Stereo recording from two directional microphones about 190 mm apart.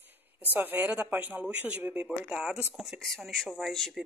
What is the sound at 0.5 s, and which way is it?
Speech, 10° right (ahead or behind).